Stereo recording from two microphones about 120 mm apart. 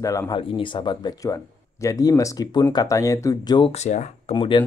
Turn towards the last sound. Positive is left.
turn(degrees=40)  # may be behind; listen again after turning